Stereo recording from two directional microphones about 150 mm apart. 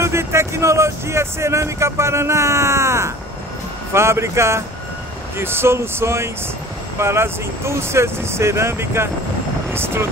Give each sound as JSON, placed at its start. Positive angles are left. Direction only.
{"t": 0.0, "sound": "speech", "side_deg": -20}